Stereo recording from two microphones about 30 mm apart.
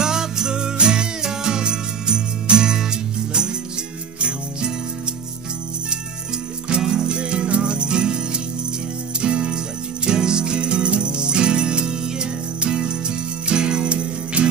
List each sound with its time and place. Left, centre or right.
0.0 s music: right
4.2 s jingle bell: right
6.9 s music: right
9.2 s jingle bell: right
10.0 s music: right